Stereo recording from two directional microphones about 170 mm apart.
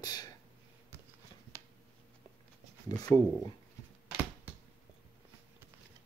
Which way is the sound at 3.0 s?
20° left (ahead or behind).